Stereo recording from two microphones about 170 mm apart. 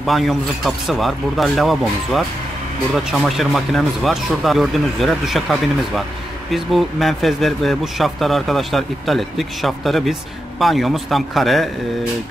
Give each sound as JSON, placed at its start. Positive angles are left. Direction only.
{"t": 0.0, "sound": "speech", "side_deg": 0}